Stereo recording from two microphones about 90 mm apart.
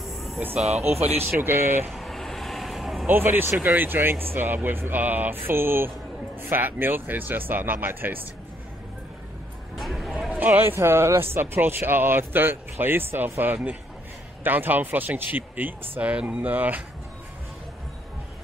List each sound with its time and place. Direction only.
0.0 s music: centre (ahead or behind)
1.0 s speech: 25° right (ahead or behind)
1.9 s vehicle: centre (ahead or behind)
3.1 s speech: 25° right (ahead or behind)
9.8 s a sound: centre (ahead or behind)
10.3 s speech: 20° right (ahead or behind)